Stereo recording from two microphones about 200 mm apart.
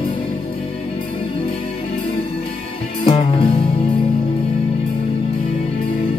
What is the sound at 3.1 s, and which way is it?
Music, 25° left (ahead or behind).